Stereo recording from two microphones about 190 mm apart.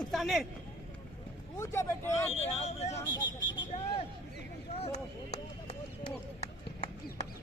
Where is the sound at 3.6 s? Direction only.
25° left (ahead or behind).